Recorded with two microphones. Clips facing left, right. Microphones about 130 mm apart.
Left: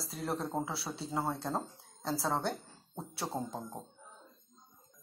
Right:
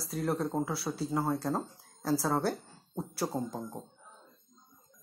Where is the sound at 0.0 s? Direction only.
Centre (ahead or behind).